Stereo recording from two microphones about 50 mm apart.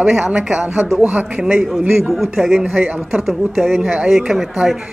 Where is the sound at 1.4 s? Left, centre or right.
Centre.